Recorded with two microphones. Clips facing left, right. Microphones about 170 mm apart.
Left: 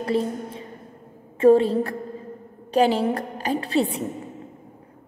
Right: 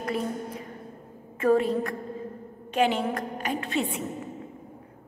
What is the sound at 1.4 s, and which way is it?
A woman's voice, 30° left (ahead or behind).